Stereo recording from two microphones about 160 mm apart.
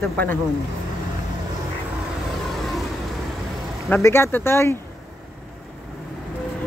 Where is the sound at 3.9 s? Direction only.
15° left (ahead or behind).